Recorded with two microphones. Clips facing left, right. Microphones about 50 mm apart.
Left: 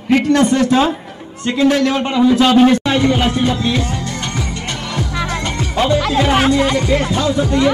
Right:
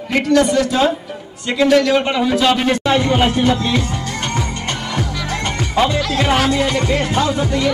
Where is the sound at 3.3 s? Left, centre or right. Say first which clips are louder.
Even; right.